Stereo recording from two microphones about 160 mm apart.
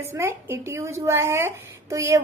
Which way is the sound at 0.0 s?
15° right (ahead or behind).